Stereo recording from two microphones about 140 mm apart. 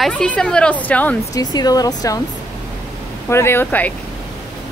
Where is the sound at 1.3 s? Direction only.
30° left (ahead or behind).